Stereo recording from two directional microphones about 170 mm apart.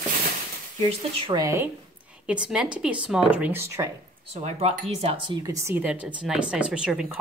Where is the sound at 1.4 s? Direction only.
15° right (ahead or behind).